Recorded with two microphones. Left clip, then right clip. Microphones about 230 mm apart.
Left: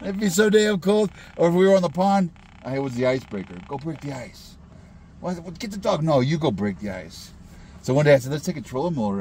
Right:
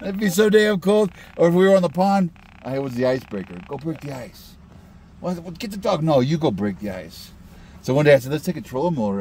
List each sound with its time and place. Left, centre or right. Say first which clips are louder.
0.0 s speech: right 2 dB; right
3.3 s speech: right 2 dB; centre
5.2 s speech: right 2 dB; right